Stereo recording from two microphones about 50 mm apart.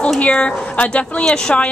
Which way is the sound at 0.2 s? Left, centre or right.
Left.